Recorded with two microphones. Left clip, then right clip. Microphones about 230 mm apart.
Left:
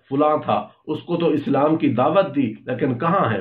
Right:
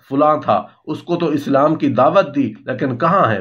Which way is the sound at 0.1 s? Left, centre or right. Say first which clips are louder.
Right 4 dB; right.